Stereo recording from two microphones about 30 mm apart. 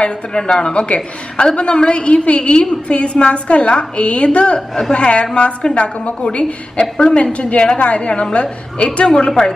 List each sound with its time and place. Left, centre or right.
0.3 s a woman's voice: left
4.6 s speech: centre
4.9 s a woman's voice: left
7.3 s a woman's voice: left